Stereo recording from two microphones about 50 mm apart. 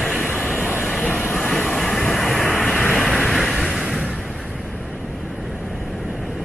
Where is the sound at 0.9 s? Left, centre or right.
Left.